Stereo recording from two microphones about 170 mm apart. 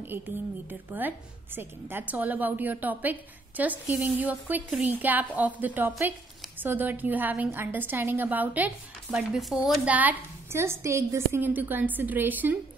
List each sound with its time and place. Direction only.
0.1 s a woman's voice: 15° right (ahead or behind)